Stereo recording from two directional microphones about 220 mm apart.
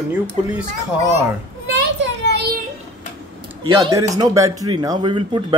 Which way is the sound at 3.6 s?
15° right (ahead or behind).